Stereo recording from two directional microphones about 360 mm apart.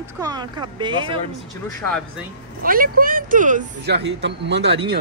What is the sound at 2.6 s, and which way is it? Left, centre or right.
Speech, right.